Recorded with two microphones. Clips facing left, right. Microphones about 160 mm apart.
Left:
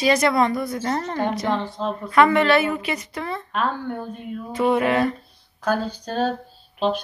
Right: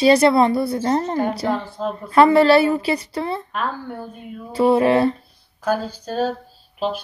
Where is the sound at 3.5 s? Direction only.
5° right (ahead or behind).